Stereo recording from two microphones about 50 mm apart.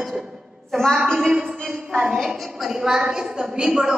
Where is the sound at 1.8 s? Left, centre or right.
Centre.